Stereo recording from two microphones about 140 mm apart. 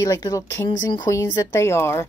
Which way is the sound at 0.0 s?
25° left (ahead or behind).